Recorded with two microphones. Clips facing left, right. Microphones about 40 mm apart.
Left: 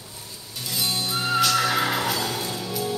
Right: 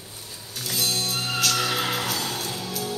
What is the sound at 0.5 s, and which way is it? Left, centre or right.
Music, centre.